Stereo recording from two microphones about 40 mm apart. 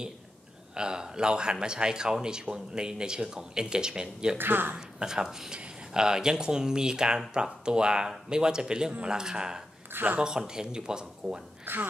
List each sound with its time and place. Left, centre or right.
0.7 s a man's voice: centre
4.4 s speech: right
4.7 s a man's voice: centre
11.6 s speech: right